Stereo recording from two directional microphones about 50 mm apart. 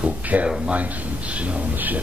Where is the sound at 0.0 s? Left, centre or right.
Right.